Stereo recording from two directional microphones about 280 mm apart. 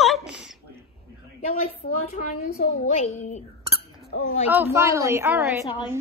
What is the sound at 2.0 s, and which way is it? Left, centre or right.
A woman's voice, left.